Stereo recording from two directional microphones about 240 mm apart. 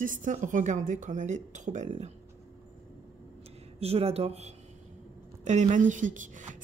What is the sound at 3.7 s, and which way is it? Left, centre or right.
A woman's voice, right.